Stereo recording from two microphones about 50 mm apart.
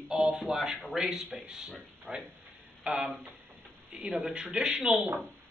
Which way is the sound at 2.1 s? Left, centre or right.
Right.